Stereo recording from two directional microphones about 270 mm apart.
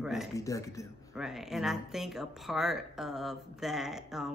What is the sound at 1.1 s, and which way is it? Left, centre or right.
A woman's voice, centre.